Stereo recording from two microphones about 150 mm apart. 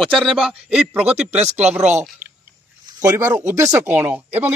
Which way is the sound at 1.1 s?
50° right (ahead or behind).